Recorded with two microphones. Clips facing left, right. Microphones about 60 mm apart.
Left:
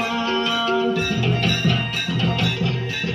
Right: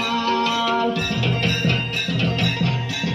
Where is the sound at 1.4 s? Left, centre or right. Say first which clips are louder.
Left 1 dB; right.